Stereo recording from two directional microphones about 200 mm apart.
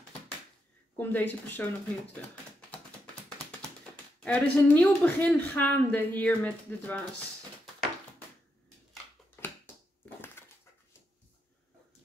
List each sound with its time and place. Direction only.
0.9 s a woman's voice: 10° left (ahead or behind)
4.2 s a woman's voice: 5° left (ahead or behind)
10.0 s dog: 10° left (ahead or behind)